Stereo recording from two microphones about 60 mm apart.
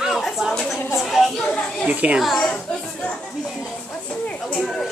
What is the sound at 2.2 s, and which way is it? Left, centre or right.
Speech, centre.